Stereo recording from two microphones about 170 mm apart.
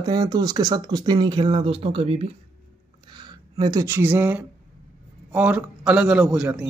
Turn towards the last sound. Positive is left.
turn(degrees=-5)  # may be behind; listen again after turning